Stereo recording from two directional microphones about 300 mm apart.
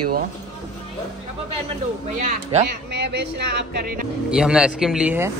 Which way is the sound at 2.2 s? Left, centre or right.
Right.